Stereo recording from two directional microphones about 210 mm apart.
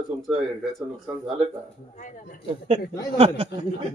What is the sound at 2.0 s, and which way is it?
Speech, 40° left (ahead or behind).